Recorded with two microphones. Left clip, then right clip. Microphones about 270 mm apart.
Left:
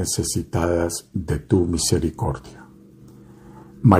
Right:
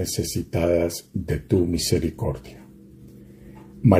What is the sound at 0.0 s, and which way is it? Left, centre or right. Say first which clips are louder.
Speech: left 2 dB; centre.